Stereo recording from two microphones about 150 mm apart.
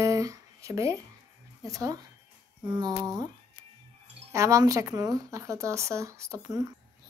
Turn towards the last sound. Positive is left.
turn(degrees=-20)  # may be behind; listen again after turning